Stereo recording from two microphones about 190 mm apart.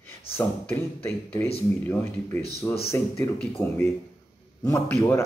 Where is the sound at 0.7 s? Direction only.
10° left (ahead or behind).